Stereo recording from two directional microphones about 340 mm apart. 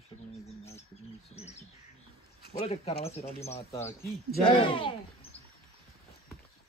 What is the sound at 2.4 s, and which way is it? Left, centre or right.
Speech, centre.